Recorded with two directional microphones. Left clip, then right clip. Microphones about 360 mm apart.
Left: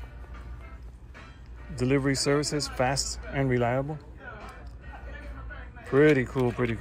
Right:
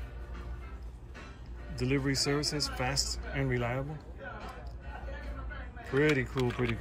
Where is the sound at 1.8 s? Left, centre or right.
Centre.